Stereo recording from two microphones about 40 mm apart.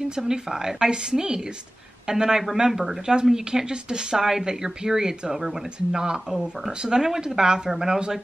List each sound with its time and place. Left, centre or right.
0.1 s speech: centre